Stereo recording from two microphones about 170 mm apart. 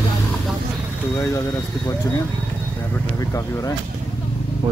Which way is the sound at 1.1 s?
20° left (ahead or behind).